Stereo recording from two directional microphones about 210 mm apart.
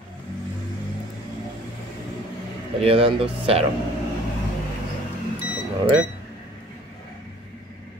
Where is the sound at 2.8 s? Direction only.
25° right (ahead or behind).